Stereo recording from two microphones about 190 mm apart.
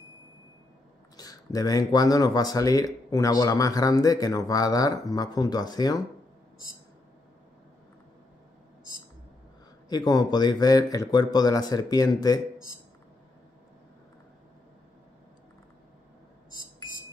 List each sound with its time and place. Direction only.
1.1 s speech: 20° left (ahead or behind)
9.8 s speech: 20° left (ahead or behind)